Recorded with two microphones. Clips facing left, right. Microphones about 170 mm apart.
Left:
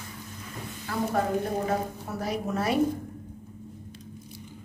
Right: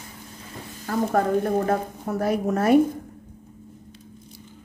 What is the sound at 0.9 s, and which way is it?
A woman's voice, 40° right (ahead or behind).